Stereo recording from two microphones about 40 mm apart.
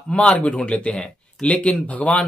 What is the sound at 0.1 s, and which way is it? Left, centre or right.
Speech, left.